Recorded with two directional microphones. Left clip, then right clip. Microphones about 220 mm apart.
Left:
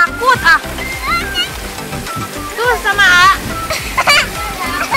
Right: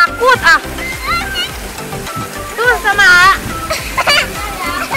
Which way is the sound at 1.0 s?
Centre (ahead or behind).